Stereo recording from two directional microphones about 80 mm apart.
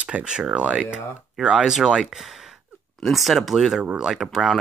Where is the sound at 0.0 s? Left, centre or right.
Centre.